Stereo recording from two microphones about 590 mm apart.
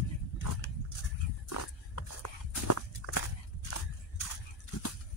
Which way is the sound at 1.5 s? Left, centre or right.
Left.